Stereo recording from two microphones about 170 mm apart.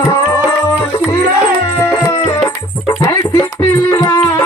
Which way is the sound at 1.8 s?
15° left (ahead or behind).